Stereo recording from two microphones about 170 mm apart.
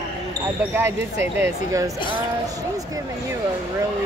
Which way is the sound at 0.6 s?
15° right (ahead or behind).